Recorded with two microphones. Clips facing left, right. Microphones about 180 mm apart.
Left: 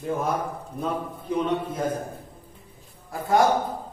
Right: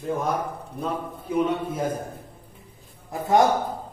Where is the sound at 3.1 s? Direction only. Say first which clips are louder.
Right 2 dB; 20° right (ahead or behind).